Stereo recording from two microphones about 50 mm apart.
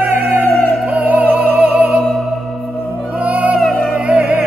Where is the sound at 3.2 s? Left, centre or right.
Right.